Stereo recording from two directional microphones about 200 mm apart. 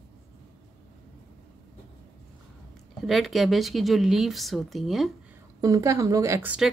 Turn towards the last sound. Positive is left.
turn(degrees=-5)  # may be behind; listen again after turning